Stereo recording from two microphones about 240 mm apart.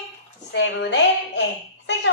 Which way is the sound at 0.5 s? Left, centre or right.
Left.